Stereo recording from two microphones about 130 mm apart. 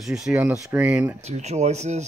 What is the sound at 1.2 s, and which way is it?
Speech, 60° right (ahead or behind).